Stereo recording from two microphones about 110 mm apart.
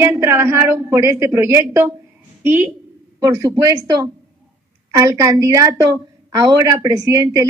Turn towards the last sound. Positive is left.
turn(degrees=-30)  # may be behind; listen again after turning